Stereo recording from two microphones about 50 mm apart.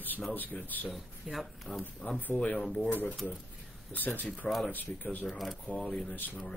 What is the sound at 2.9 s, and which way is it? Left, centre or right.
Speech, left.